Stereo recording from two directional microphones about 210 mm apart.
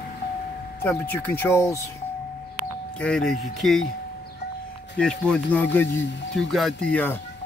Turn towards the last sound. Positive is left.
turn(degrees=5)  # may be behind; listen again after turning